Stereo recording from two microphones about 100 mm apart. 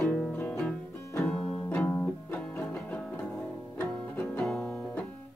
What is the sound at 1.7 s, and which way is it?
Music, 15° left (ahead or behind).